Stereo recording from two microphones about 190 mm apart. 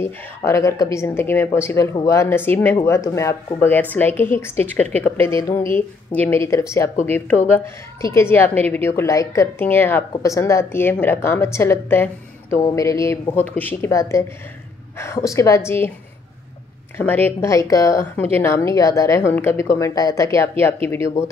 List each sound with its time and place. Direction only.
0.0 s a woman's voice: 15° left (ahead or behind)
16.9 s a woman's voice: 10° left (ahead or behind)